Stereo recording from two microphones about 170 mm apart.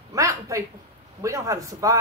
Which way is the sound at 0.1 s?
20° right (ahead or behind).